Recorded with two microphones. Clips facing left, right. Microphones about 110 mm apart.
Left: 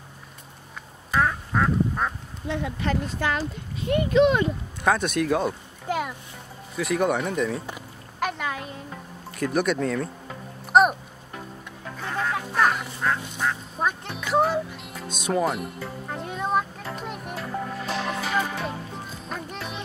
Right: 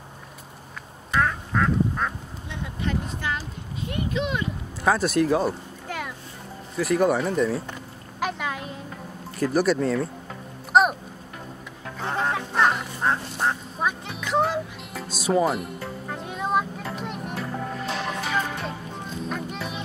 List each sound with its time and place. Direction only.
1.1 s quack: 5° left (ahead or behind)
2.4 s speech: 80° left
3.9 s speech: 55° left (ahead or behind)
4.8 s speech: 5° right (ahead or behind)
5.9 s a sound: 20° left (ahead or behind)
6.8 s speech: centre (ahead or behind)
7.6 s a sound: 5° left (ahead or behind)
9.4 s speech: 5° right (ahead or behind)
10.7 s music: centre (ahead or behind)
12.0 s music: 30° right (ahead or behind)
13.7 s music: centre (ahead or behind)